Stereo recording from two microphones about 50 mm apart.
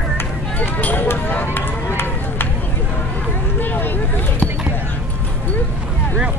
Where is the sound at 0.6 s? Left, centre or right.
Left.